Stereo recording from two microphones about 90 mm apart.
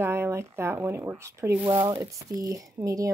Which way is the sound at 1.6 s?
55° right (ahead or behind).